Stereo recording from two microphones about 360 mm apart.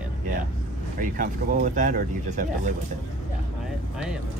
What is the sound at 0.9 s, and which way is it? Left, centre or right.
Speech, right.